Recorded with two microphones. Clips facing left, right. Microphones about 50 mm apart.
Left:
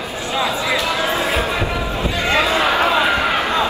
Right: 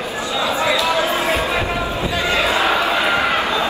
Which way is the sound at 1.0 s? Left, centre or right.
Left.